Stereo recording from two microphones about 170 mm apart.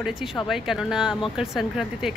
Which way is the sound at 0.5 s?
Centre (ahead or behind).